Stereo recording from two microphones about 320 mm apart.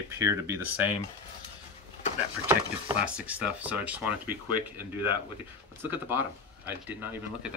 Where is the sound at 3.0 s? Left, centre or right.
Centre.